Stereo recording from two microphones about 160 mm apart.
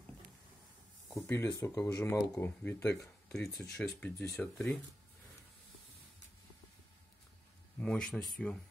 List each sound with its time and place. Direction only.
1.2 s speech: 15° left (ahead or behind)
3.3 s speech: 5° left (ahead or behind)
7.8 s speech: 5° left (ahead or behind)